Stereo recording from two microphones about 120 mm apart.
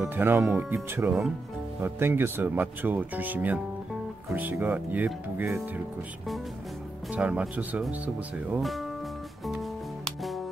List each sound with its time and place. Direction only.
0.0 s speech: 15° right (ahead or behind)
7.1 s speech: 10° right (ahead or behind)